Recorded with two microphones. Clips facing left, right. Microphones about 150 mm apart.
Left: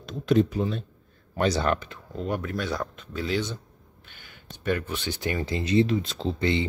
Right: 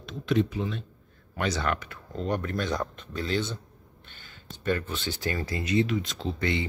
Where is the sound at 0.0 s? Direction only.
40° left (ahead or behind).